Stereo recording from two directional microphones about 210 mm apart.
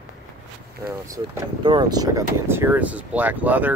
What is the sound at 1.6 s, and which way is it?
Speech, 20° right (ahead or behind).